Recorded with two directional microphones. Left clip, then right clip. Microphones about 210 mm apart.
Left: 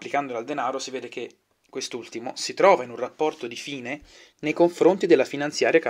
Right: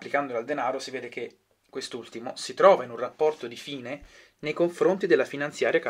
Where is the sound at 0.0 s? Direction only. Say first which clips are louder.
Left 1 dB; 30° left (ahead or behind).